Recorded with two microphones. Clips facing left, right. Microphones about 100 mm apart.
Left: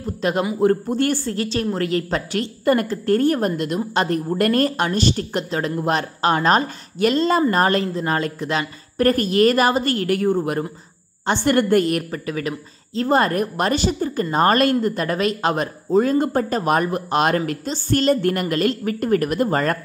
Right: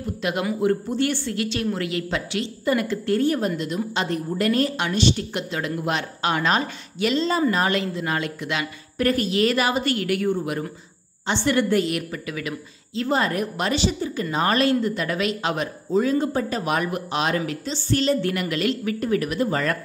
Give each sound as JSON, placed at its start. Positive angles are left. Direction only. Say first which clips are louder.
{"t": 0.0, "sound": "a man's voice", "louder": "left 4 dB", "side_deg": 35}